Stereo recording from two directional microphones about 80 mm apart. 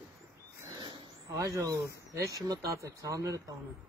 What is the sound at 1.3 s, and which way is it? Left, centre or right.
Speech, right.